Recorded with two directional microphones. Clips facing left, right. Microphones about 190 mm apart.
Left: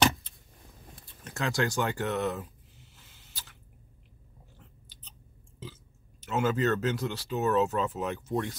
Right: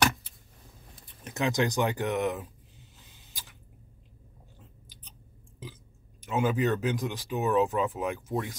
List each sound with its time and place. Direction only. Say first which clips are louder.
1.0 s a sound: right 4 dB; 20° right (ahead or behind)
4.6 s biting: right 2 dB; 15° right (ahead or behind)
6.2 s speech: even; 15° right (ahead or behind)